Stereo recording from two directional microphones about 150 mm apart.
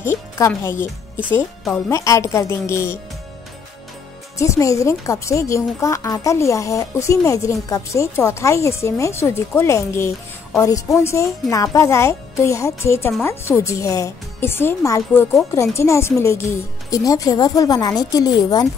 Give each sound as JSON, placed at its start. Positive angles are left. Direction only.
{"t": 0.0, "sound": "music", "side_deg": 20}
{"t": 0.5, "sound": "a woman's voice", "side_deg": 15}
{"t": 4.4, "sound": "a woman's voice", "side_deg": 20}